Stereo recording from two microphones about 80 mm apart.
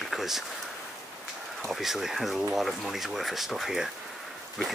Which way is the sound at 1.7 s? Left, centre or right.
Centre.